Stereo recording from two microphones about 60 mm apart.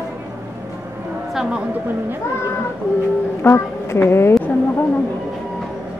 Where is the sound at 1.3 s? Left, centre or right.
Centre.